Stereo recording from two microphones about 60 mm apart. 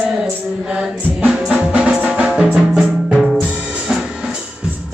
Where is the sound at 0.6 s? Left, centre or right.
Centre.